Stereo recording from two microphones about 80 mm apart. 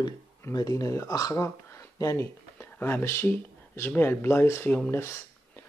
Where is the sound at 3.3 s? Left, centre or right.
Left.